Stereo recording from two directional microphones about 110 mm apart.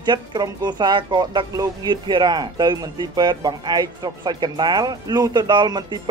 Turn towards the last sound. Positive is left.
turn(degrees=-40)  # may be behind; listen again after turning